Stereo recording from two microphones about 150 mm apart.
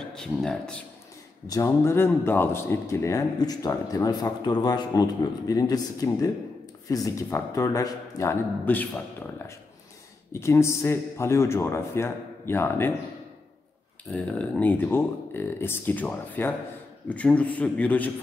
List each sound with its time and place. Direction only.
0.1 s speech: 5° left (ahead or behind)
1.5 s speech: 20° left (ahead or behind)
10.4 s a man's voice: 20° left (ahead or behind)
14.1 s a man's voice: 10° left (ahead or behind)